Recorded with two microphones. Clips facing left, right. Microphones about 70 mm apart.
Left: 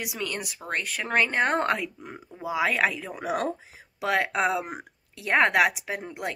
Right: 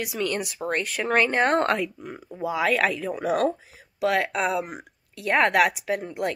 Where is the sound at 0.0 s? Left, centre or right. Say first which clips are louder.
Right 5 dB; centre.